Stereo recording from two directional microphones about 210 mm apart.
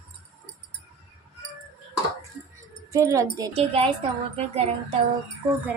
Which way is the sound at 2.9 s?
15° right (ahead or behind).